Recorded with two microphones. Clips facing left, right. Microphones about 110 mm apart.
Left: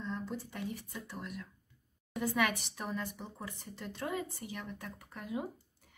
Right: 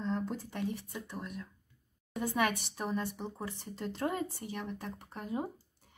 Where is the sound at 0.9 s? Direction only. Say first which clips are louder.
Right 2 dB; 20° right (ahead or behind).